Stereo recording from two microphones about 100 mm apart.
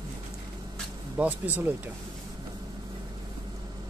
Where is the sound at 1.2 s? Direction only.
15° right (ahead or behind).